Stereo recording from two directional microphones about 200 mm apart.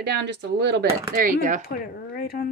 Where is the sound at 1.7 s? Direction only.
50° left (ahead or behind).